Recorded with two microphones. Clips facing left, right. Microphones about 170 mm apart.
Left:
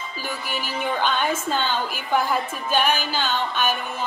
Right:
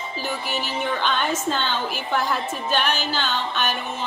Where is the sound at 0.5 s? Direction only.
50° left (ahead or behind).